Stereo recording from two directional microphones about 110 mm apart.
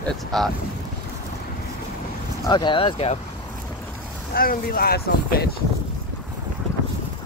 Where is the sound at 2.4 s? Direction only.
45° left (ahead or behind).